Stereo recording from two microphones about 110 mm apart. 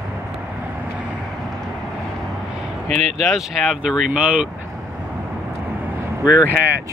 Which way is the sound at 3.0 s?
80° right.